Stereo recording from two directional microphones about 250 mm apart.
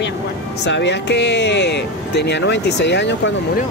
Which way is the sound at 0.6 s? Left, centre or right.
Left.